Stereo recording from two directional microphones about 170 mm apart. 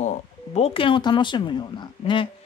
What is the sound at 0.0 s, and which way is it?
Speech, 40° left (ahead or behind).